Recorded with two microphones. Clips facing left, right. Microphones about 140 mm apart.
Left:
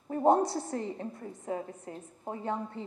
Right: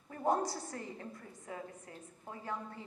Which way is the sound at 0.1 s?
25° left (ahead or behind).